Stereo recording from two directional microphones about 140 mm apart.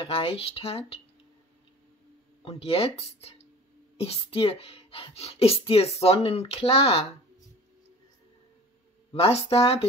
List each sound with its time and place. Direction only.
0.0 s speech: 45° left (ahead or behind)
2.4 s speech: 45° left (ahead or behind)
9.1 s speech: 45° left (ahead or behind)